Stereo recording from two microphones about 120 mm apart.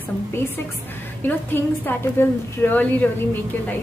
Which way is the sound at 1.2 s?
15° left (ahead or behind).